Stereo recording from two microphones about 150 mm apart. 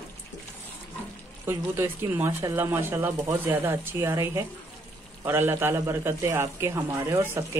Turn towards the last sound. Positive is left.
turn(degrees=-15)  # may be behind; listen again after turning